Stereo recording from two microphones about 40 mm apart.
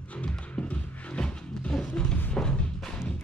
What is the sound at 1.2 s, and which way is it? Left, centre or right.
Music, left.